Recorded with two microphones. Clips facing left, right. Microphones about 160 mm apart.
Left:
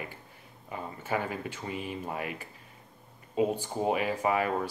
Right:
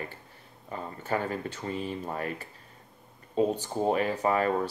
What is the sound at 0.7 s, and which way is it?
Speech, 10° left (ahead or behind).